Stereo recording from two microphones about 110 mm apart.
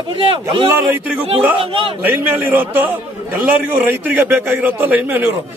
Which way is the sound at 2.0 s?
15° right (ahead or behind).